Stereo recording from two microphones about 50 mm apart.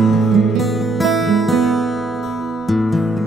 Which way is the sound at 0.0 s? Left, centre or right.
Centre.